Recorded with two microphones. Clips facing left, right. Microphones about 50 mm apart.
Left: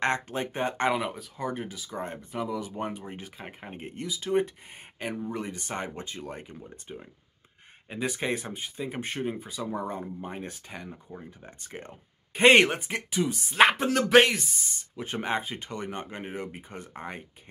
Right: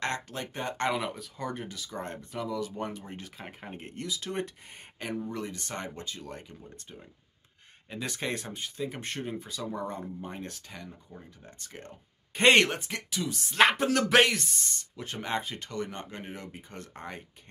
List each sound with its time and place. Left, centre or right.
0.0 s speech: left
0.9 s speech: centre; by 11.9 s left
12.4 s speech: centre
13.7 s speech: centre